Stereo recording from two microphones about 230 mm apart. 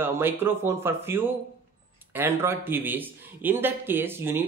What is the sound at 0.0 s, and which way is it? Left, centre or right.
A man's voice, centre.